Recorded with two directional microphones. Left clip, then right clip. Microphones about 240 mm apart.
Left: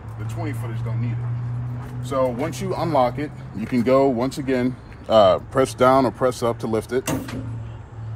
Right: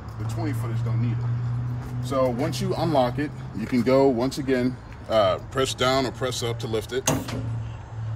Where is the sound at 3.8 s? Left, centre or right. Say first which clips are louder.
Left 3 dB; left.